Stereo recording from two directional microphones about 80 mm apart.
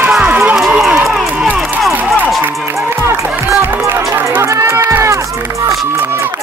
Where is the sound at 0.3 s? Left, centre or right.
Right.